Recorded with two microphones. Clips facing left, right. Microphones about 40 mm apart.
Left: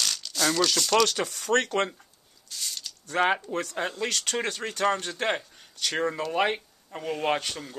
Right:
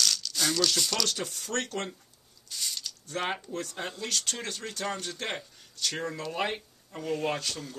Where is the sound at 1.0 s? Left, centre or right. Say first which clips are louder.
Left 6 dB; left.